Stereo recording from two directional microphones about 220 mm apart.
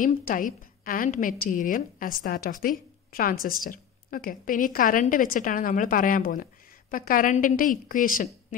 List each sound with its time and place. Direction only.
0.0 s a woman's voice: 40° left (ahead or behind)